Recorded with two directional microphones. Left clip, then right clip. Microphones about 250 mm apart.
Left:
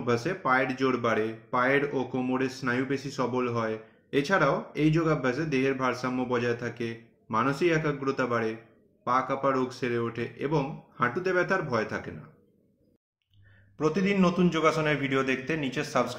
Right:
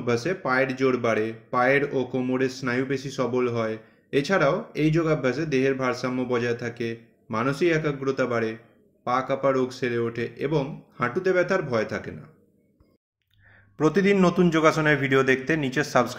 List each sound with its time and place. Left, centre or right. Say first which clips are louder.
0.0 s speech: right 2 dB; centre
13.7 s a man's voice: right 6 dB; right